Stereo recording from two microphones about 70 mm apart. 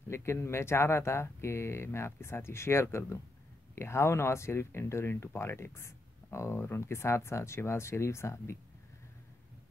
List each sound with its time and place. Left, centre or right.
0.1 s speech: left